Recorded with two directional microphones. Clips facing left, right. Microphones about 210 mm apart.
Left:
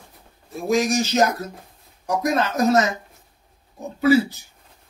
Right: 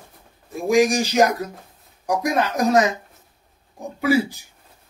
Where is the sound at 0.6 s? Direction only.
15° right (ahead or behind).